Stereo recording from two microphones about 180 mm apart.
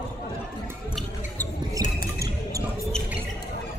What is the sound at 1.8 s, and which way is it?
Squish, 20° right (ahead or behind).